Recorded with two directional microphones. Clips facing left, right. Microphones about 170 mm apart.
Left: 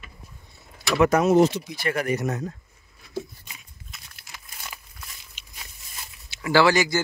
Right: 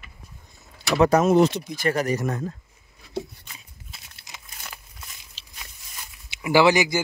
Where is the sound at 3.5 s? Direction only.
30° right (ahead or behind).